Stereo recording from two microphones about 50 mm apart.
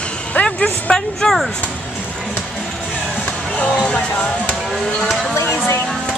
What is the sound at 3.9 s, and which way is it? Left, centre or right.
Music, left.